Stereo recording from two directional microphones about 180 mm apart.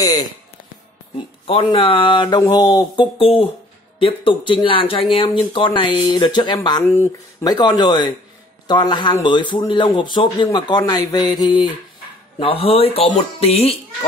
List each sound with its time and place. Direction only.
1.5 s a man's voice: 30° left (ahead or behind)
6.8 s a man's voice: 10° left (ahead or behind); by 13.7 s 35° left (ahead or behind)